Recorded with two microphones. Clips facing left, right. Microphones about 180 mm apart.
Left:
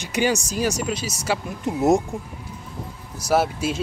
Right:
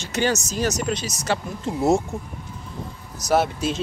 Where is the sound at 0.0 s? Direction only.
15° left (ahead or behind).